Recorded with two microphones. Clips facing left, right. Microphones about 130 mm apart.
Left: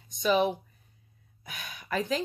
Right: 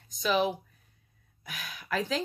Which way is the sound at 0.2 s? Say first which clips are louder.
Left 2 dB; centre (ahead or behind).